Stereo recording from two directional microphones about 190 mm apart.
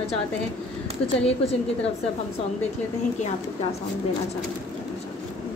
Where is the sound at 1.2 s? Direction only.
30° left (ahead or behind).